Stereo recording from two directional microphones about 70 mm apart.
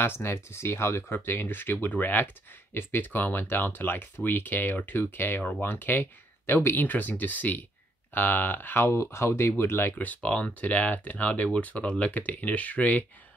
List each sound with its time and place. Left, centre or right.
0.0 s speech: left
9.9 s speech: left